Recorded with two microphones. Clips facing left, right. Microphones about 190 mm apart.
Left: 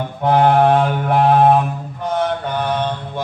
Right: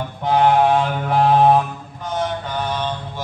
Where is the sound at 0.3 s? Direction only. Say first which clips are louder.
Left 2 dB; 55° left (ahead or behind).